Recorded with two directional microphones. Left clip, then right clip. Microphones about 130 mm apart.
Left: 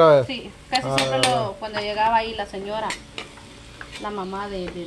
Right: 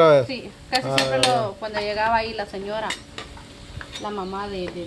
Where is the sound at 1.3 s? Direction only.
Centre (ahead or behind).